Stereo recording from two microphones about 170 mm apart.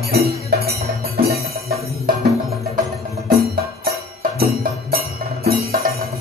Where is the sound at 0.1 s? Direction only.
70° right (ahead or behind).